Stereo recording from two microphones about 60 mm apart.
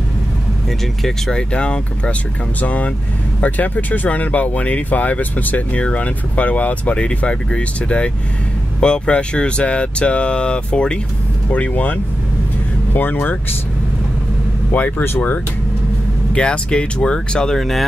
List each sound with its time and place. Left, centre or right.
1.0 s speech: centre
1.5 s speech: centre
11.5 s speech: left
14.7 s speech: left
16.3 s speech: centre